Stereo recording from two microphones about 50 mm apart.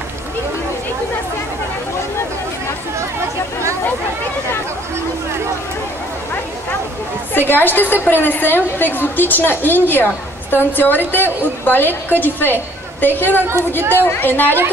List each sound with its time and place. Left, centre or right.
7.3 s a woman's voice: left
13.7 s a woman's voice: right
14.0 s a woman's voice: left